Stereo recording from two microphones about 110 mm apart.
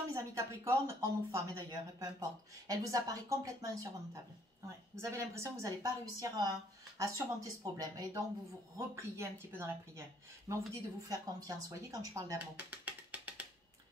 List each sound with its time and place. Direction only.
0.1 s a woman's voice: 30° right (ahead or behind)
12.5 s music: 15° right (ahead or behind)